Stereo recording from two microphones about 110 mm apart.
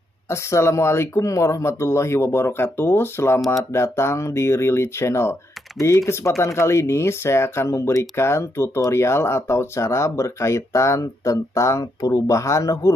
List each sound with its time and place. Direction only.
0.3 s speech: 25° left (ahead or behind)
3.3 s speech: centre (ahead or behind)
3.7 s speech: 25° left (ahead or behind)